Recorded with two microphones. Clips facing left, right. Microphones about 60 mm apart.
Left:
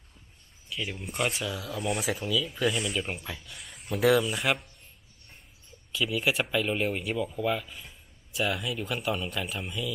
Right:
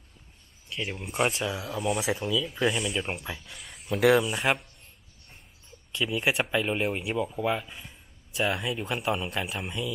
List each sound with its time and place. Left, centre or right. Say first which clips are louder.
0.7 s speech: right 1 dB; centre
1.1 s speech: right 3 dB; right
1.8 s speech: right 2 dB; centre
2.2 s speech: even; centre
3.3 s speech: right 1 dB; centre
4.1 s speech: even; centre
5.9 s speech: even; centre
6.5 s speech: right 1 dB; right
8.4 s speech: right 2 dB; right